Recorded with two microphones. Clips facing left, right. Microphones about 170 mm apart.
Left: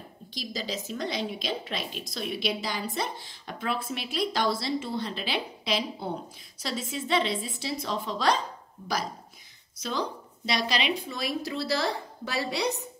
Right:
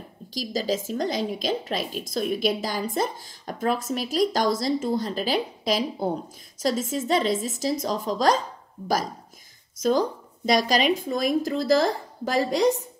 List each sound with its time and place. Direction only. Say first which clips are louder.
0.3 s a woman's voice: right 8 dB; 45° right (ahead or behind)
9.8 s a woman's voice: right 9 dB; 45° right (ahead or behind)